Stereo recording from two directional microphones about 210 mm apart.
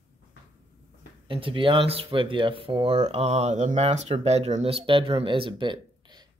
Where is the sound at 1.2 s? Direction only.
25° right (ahead or behind).